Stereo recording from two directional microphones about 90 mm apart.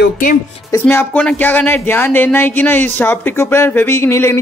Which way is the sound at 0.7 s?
30° left (ahead or behind).